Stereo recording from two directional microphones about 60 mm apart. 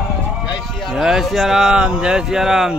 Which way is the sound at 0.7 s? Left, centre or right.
Centre.